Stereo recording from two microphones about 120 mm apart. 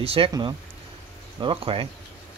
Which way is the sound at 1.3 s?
45° right (ahead or behind).